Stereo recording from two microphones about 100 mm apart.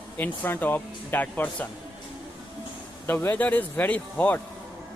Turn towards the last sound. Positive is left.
turn(degrees=15)  # may be behind; listen again after turning